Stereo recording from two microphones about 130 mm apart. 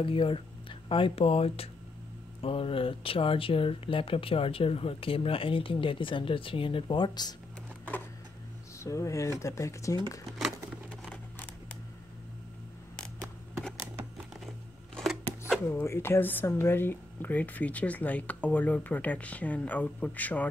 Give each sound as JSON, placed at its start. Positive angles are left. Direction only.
{"t": 0.0, "sound": "speech", "side_deg": 45}
{"t": 8.7, "sound": "speech", "side_deg": 25}
{"t": 12.9, "sound": "a sound", "side_deg": 5}
{"t": 15.7, "sound": "speech", "side_deg": 20}